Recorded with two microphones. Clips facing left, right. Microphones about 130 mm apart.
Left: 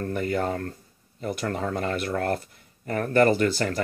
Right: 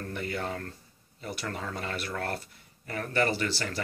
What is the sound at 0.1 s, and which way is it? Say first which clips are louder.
Speech: left 7 dB; 45° left (ahead or behind).